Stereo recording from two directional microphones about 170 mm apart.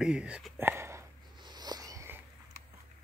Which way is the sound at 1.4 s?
25° right (ahead or behind).